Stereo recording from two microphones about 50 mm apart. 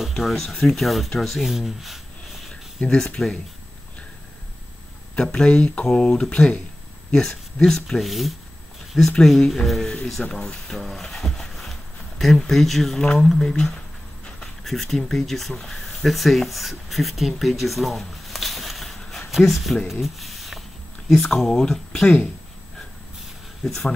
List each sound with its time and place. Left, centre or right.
0.2 s speech: centre
1.4 s speech: centre
2.8 s speech: left
5.1 s speech: centre
8.0 s speech: centre
10.3 s speech: centre
10.7 s a sound: centre
13.2 s speech: centre
19.9 s a sound: centre
21.1 s speech: centre
23.6 s speech: centre